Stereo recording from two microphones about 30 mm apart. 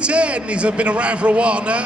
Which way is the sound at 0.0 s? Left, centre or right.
Right.